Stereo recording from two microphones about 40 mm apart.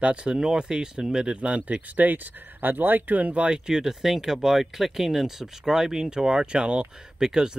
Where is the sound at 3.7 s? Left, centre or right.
Centre.